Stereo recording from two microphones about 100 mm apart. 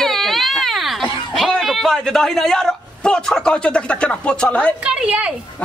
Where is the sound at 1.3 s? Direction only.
Centre (ahead or behind).